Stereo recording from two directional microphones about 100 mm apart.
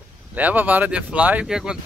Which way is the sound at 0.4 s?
15° right (ahead or behind).